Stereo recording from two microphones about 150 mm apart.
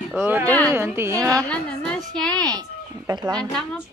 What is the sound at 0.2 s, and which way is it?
Speech, 15° right (ahead or behind).